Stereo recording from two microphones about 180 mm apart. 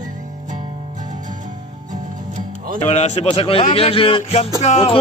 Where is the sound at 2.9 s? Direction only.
40° left (ahead or behind).